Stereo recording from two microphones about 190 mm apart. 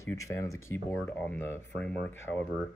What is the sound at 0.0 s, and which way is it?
Speech, 15° left (ahead or behind).